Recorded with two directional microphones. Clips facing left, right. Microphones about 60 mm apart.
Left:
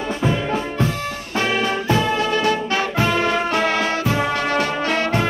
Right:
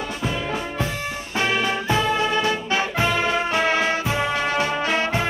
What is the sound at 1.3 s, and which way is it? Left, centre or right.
Music, centre.